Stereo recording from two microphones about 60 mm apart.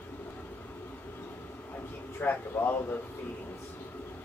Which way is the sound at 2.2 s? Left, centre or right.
Left.